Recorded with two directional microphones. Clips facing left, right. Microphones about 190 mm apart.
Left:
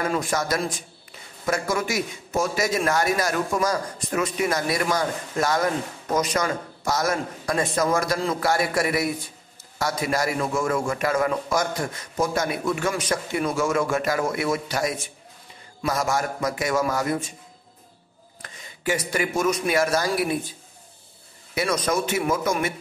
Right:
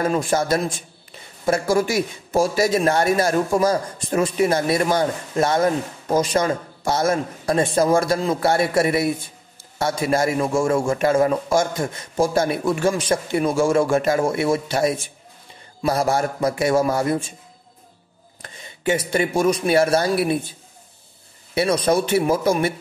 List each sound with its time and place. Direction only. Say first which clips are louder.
0.0 s a man's voice: right 5 dB; 25° right (ahead or behind)
18.4 s speech: right 5 dB; 25° right (ahead or behind)
21.5 s a man's voice: right 5 dB; 30° right (ahead or behind)